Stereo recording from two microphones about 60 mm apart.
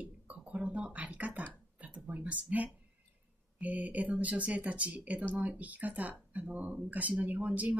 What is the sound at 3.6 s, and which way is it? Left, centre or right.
Speech, right.